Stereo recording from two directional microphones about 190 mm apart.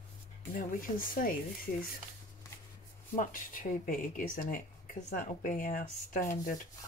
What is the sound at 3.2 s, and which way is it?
Speech, 45° left (ahead or behind).